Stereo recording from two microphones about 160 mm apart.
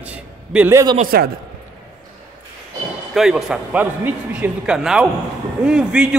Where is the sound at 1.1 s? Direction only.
70° right (ahead or behind).